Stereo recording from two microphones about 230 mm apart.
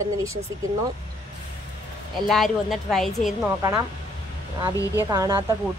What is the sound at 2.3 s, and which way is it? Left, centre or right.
A woman's voice, centre.